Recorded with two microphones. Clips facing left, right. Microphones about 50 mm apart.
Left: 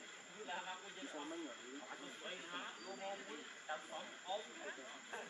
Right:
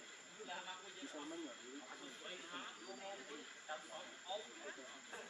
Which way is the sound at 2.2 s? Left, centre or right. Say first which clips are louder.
Left 3 dB; left.